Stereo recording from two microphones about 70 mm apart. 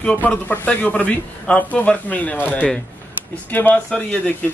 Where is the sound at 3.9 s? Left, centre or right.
Centre.